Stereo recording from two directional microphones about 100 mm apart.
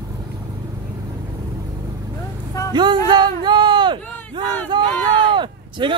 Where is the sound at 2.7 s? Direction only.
50° right (ahead or behind).